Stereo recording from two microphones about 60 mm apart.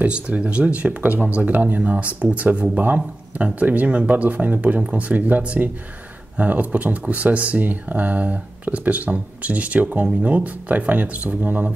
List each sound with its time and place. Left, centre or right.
0.0 s speech: right